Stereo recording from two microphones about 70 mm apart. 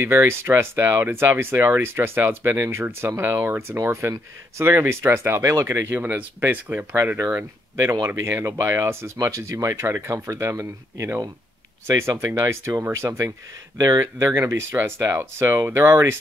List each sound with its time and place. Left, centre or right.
0.0 s speech: right
7.7 s speech: right
13.7 s speech: right